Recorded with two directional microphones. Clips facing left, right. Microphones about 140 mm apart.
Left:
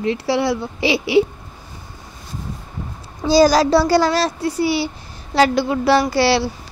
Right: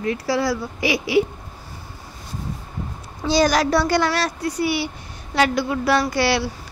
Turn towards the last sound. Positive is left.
turn(degrees=30)  # may be behind; listen again after turning